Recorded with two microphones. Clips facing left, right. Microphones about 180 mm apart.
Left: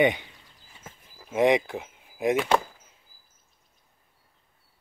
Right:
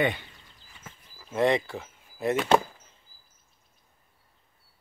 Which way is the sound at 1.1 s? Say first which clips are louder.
Left 3 dB; 15° left (ahead or behind).